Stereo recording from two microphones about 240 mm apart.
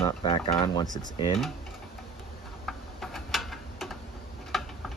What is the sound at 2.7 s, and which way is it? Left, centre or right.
Tick-tock, centre.